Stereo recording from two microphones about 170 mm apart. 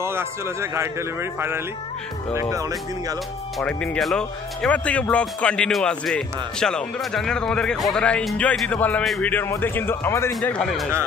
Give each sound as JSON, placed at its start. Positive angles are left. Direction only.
{"t": 0.0, "sound": "a man's voice", "side_deg": -15}
{"t": 3.5, "sound": "speech", "side_deg": 5}